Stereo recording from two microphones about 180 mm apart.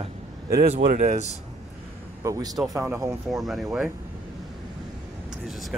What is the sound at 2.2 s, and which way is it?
Speech, 20° right (ahead or behind).